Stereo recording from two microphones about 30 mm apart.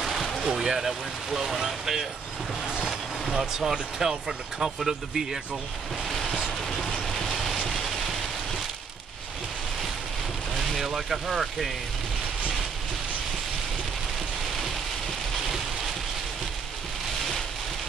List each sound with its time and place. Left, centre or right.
0.0 s a sound: centre
0.4 s speech: centre
0.8 s speech: centre
3.3 s speech: right
4.7 s speech: centre
6.9 s vehicle: centre
10.5 s vehicle: centre
11.1 s speech: centre